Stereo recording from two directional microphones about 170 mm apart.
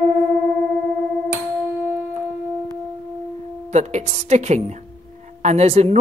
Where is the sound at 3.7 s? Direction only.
40° right (ahead or behind).